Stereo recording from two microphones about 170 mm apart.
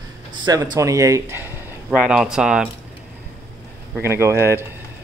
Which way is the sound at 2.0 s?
5° right (ahead or behind).